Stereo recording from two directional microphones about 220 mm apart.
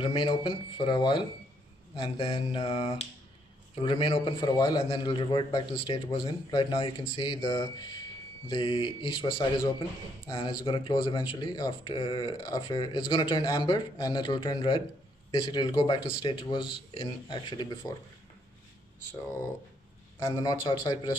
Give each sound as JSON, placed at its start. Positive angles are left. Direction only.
{"t": 0.0, "sound": "a man's voice", "side_deg": 20}
{"t": 20.2, "sound": "a man's voice", "side_deg": 20}